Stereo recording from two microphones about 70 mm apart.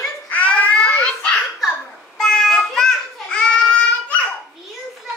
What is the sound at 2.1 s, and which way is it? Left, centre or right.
Child singing, centre.